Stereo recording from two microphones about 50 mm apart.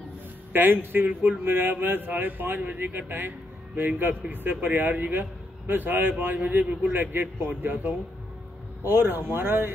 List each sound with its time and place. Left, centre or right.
0.5 s a man's voice: right
1.0 s a man's voice: right
1.4 s a man's voice: right
6.9 s a man's voice: right